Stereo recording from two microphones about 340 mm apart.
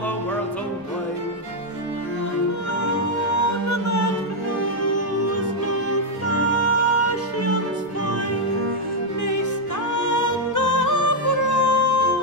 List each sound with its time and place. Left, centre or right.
3.3 s music: left
9.9 s music: left